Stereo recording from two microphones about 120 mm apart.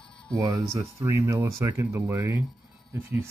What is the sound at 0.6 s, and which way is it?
Speech, 25° right (ahead or behind).